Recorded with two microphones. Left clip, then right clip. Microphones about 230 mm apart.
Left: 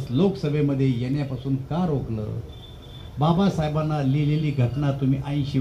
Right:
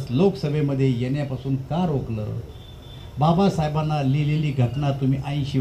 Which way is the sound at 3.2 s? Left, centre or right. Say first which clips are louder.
Right 3 dB; right.